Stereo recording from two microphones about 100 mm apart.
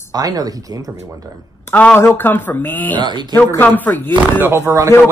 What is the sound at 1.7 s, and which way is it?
Speech, 20° left (ahead or behind).